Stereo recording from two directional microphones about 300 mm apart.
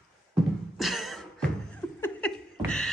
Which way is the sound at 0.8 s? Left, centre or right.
Centre.